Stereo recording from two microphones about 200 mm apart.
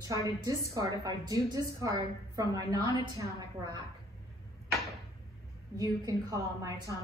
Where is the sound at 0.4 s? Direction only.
15° right (ahead or behind).